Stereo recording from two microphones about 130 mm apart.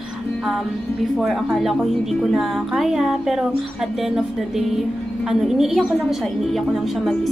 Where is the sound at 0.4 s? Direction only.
Centre (ahead or behind).